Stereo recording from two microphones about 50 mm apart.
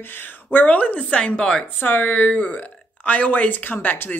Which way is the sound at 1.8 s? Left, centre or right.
Left.